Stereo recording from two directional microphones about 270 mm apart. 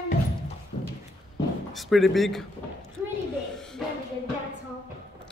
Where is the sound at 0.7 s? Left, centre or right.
Left.